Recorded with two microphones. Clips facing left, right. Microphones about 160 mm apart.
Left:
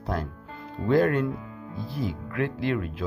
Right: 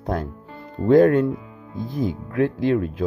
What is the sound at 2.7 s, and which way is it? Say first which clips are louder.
Speech: right 7 dB; 45° right (ahead or behind).